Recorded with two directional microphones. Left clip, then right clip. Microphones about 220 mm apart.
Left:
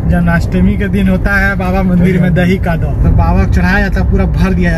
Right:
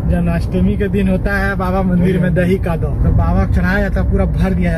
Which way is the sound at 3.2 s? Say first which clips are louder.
Left 5 dB; centre (ahead or behind).